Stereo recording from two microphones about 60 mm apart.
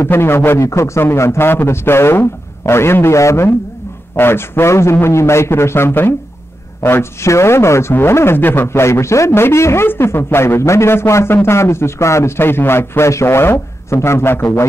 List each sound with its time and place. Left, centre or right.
0.0 s a man's voice: left
0.6 s a man's voice: left
4.2 s a man's voice: left
8.4 s a man's voice: left
8.6 s a man's voice: left